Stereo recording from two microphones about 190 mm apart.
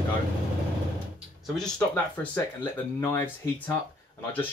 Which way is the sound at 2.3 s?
10° left (ahead or behind).